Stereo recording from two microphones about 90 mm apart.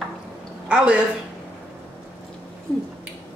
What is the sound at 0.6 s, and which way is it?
Speech, 10° right (ahead or behind).